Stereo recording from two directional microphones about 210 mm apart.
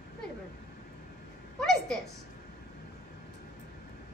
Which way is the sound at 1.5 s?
5° left (ahead or behind).